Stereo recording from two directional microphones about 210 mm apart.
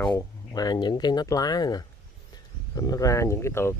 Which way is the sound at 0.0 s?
15° left (ahead or behind).